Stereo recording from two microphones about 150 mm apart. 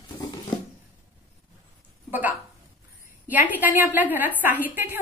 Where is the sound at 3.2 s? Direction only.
10° right (ahead or behind).